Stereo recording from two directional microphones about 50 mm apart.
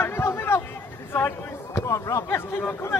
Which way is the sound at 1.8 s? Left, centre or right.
Left.